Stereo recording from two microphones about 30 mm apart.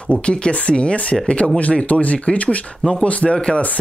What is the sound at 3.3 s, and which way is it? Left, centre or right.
Speech, left.